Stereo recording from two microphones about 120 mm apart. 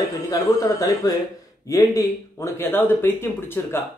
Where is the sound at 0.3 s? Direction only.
30° left (ahead or behind).